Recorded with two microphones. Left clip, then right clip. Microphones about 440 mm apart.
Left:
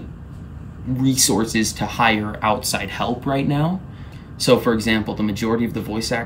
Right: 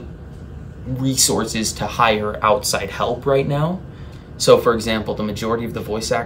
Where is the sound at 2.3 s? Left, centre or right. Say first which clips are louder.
Right 3 dB; right.